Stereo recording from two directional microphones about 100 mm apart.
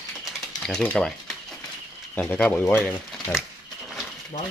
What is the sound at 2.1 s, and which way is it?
Speech, 15° left (ahead or behind).